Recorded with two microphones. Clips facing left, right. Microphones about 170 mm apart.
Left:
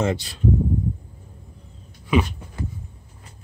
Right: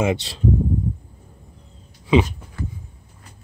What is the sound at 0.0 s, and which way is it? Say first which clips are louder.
Speech: right 2 dB; 20° right (ahead or behind).